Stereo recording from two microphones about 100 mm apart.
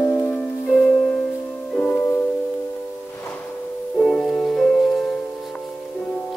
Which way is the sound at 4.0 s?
5° left (ahead or behind).